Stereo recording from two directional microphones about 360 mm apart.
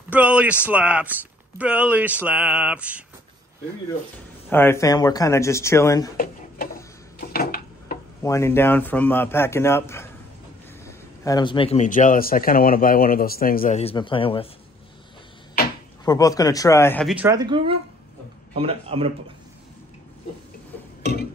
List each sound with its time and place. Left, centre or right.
0.1 s speech: centre
4.5 s a man's voice: centre
6.1 s speech: left
7.2 s a sound: left
8.2 s a man's voice: centre
16.1 s a man's voice: centre